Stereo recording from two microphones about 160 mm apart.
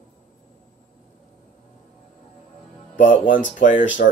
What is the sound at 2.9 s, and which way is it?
Speech, 55° left (ahead or behind).